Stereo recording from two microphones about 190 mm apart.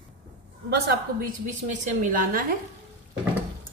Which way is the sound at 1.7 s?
45° right (ahead or behind).